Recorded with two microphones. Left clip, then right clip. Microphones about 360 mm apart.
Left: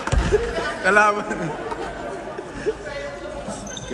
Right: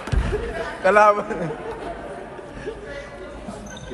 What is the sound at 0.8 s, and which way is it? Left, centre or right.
Speech, centre.